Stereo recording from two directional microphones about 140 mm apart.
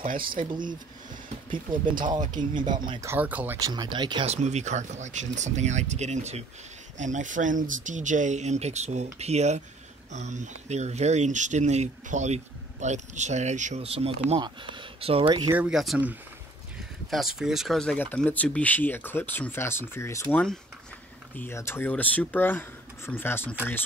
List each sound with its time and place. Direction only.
0.0 s speech: 85° right
1.5 s speech: 35° right (ahead or behind)
3.0 s speech: 15° right (ahead or behind)
3.6 s speech: 30° right (ahead or behind)
4.3 s speech: 55° right (ahead or behind)
13.8 s speech: 45° right (ahead or behind)
15.5 s speech: 5° right (ahead or behind)
17.1 s speech: 5° right (ahead or behind); by 23.5 s 15° left (ahead or behind)